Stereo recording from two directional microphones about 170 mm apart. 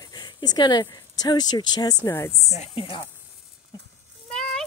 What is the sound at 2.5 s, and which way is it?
Speech, 35° left (ahead or behind).